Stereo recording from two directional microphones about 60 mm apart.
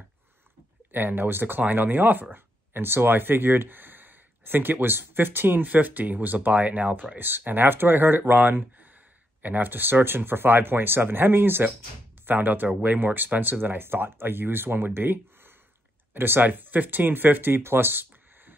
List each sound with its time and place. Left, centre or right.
0.9 s speech: right